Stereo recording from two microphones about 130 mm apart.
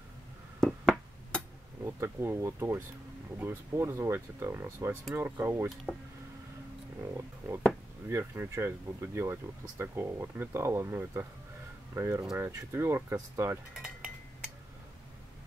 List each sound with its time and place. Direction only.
0.6 s a sound: 5° left (ahead or behind)
1.9 s speech: 20° right (ahead or behind)
7.2 s speech: 20° right (ahead or behind)
13.7 s cutlery: 5° right (ahead or behind)